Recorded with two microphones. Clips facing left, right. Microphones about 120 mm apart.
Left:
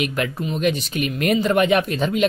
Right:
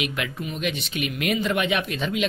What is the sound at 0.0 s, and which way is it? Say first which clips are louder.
Speech: left 5 dB; 40° left (ahead or behind).